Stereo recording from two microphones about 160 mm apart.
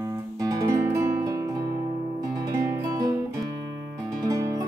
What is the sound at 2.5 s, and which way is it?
Music, 20° right (ahead or behind).